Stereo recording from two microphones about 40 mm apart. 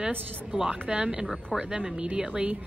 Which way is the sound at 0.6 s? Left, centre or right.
Right.